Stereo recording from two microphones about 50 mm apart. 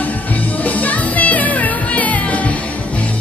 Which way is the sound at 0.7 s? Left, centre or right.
Left.